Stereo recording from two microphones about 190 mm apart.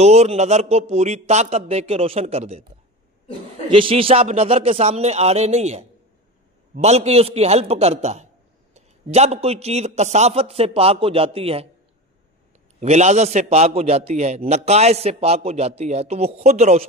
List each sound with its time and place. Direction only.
0.0 s a man's voice: 35° right (ahead or behind)
3.6 s a man's voice: 25° right (ahead or behind)
12.8 s a man's voice: 35° right (ahead or behind)